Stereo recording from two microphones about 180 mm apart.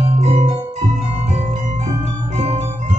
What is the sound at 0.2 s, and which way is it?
Music, 35° right (ahead or behind).